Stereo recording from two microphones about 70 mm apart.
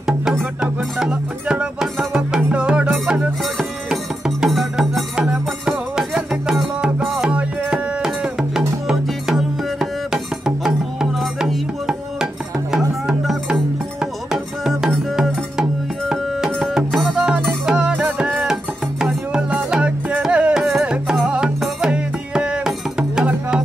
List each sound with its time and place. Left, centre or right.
0.6 s music: centre
2.9 s music: centre